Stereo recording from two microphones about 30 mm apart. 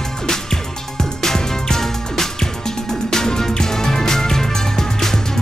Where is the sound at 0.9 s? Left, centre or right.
Centre.